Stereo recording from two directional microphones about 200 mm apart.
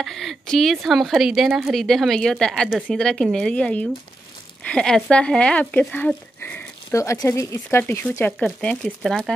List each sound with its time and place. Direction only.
0.0 s speech: centre (ahead or behind)